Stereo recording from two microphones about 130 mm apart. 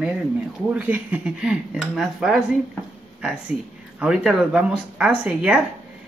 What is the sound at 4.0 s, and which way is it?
Speech, 5° right (ahead or behind).